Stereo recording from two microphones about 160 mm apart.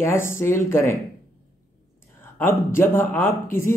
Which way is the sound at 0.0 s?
15° left (ahead or behind).